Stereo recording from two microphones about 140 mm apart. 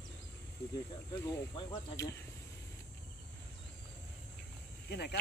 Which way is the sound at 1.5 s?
25° left (ahead or behind).